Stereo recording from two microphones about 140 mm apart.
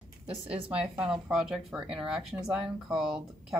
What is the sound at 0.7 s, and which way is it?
Speech, 10° right (ahead or behind).